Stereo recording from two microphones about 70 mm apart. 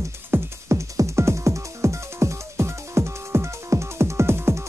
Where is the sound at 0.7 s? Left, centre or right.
Right.